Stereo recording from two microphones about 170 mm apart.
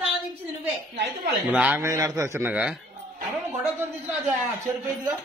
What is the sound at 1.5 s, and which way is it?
A man's voice, 10° right (ahead or behind).